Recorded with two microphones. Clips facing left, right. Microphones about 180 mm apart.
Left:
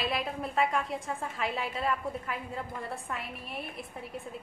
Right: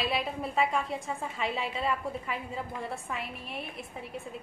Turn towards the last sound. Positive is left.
turn(degrees=0)  # may be behind; listen again after turning